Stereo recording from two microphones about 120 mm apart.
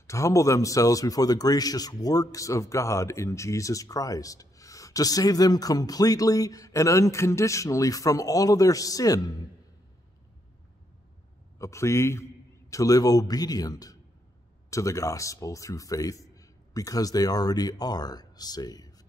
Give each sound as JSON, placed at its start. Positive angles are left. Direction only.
{"t": 0.0, "sound": "speech", "side_deg": 25}
{"t": 11.5, "sound": "a man's voice", "side_deg": 25}